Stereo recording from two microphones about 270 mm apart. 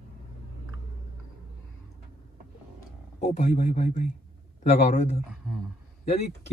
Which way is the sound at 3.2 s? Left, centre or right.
Left.